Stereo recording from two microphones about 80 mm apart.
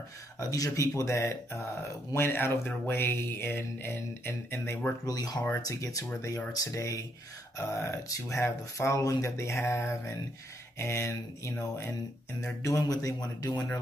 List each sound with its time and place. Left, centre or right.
0.4 s speech: left
5.0 s a man's voice: left
12.6 s a man's voice: left